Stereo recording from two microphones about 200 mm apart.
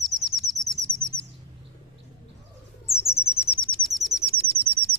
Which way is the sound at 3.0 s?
10° left (ahead or behind).